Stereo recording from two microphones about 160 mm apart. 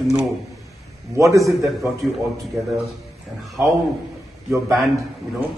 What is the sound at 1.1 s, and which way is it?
Speech, 20° right (ahead or behind).